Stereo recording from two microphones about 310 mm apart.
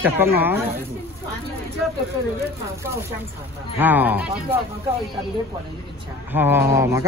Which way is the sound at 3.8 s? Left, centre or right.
Centre.